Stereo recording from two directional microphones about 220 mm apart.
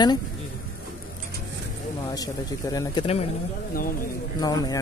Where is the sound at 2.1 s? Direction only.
15° left (ahead or behind).